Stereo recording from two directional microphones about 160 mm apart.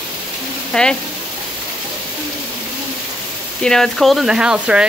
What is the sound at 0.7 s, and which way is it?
Speech, 5° left (ahead or behind).